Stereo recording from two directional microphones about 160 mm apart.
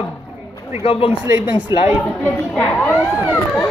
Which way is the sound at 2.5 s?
5° left (ahead or behind).